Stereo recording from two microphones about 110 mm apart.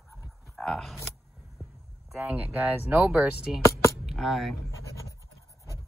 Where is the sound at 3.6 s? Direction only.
30° left (ahead or behind).